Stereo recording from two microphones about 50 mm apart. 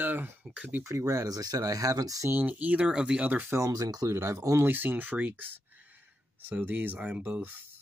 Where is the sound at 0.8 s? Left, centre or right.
Right.